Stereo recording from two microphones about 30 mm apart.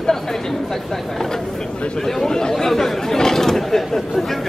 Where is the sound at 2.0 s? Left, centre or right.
Centre.